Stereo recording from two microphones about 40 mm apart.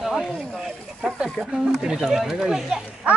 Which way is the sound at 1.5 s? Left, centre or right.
Centre.